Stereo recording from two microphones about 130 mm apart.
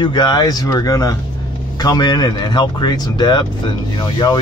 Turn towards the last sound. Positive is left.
turn(degrees=35)  # may be behind; listen again after turning